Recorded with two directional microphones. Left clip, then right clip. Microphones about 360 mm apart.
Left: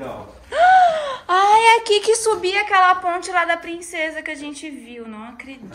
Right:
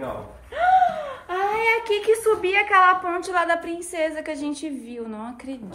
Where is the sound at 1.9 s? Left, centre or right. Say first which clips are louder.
Left 3 dB; centre.